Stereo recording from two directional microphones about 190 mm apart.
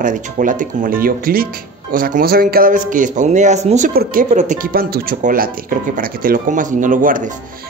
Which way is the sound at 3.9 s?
50° right (ahead or behind).